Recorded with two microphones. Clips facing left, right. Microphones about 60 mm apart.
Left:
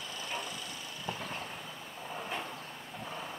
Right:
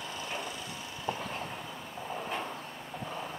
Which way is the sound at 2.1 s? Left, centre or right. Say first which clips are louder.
Right 2 dB; centre.